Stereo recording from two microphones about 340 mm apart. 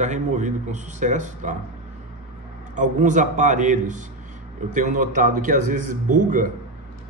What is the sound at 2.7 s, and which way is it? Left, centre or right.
Speech, right.